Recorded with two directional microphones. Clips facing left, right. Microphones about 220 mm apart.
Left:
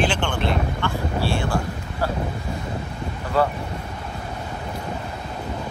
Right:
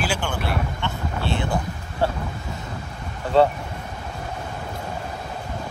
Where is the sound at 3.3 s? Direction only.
25° right (ahead or behind).